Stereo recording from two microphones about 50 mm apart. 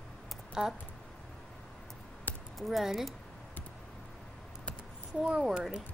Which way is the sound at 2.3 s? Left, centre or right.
Left.